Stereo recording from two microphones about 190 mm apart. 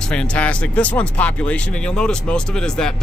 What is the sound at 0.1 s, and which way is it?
Speech, 5° left (ahead or behind).